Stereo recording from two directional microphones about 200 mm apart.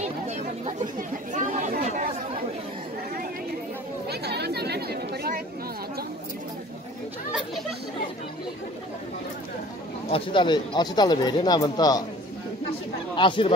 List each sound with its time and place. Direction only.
0.3 s chatter: 35° right (ahead or behind)
4.1 s chatter: 55° right (ahead or behind)
10.1 s speech: 25° left (ahead or behind)
13.1 s speech: 25° left (ahead or behind)